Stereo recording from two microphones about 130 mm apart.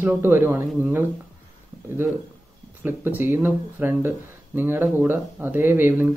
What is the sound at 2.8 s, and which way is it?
Speech, 15° right (ahead or behind).